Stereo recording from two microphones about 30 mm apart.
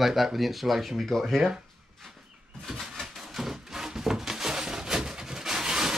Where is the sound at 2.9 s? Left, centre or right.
Centre.